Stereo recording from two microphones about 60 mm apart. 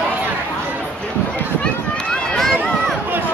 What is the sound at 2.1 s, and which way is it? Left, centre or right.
Run, centre.